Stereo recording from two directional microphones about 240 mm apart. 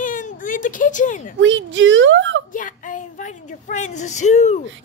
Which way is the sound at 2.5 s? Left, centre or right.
Left.